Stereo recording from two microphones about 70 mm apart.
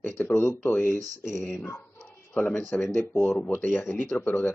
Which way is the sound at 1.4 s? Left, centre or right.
Left.